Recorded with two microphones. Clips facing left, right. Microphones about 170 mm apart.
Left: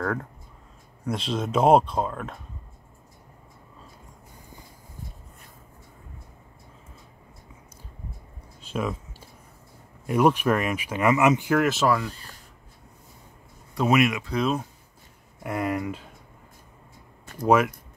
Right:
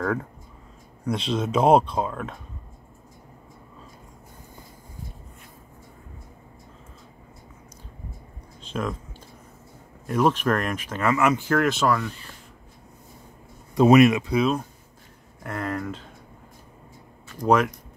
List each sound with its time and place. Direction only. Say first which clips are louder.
0.0 s speech: right 2 dB; centre (ahead or behind)
8.5 s a sound: even; 5° left (ahead or behind)
10.0 s speech: left 1 dB; 10° left (ahead or behind)
12.1 s speech: right 1 dB; 40° left (ahead or behind)
13.8 s speech: right 6 dB; 35° right (ahead or behind)
15.4 s speech: left 2 dB; 10° left (ahead or behind)
17.4 s speech: even; 5° left (ahead or behind)